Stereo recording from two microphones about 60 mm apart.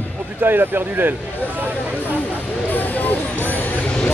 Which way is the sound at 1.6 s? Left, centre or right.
Right.